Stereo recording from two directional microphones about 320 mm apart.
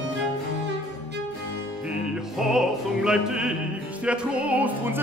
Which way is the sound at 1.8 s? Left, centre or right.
Centre.